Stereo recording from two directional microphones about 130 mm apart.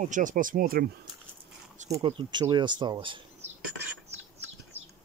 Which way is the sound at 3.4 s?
55° right (ahead or behind).